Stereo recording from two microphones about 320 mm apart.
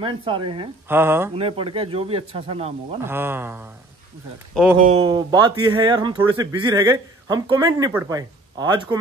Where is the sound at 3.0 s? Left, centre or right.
Centre.